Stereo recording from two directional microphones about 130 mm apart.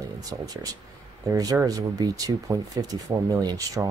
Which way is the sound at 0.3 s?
30° right (ahead or behind).